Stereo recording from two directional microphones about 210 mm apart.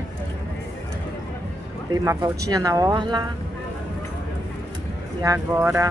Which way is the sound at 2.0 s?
15° right (ahead or behind).